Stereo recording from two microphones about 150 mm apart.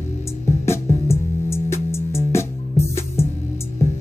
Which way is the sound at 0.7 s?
20° left (ahead or behind).